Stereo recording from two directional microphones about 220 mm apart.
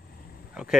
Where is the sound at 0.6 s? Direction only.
5° right (ahead or behind).